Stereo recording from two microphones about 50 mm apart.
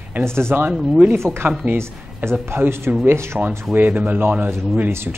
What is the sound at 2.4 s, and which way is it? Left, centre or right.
Speech, right.